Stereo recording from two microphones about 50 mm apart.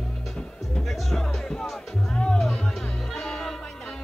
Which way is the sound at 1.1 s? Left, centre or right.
Centre.